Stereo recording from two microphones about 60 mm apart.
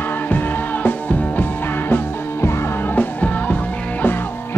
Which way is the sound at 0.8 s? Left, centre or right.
Left.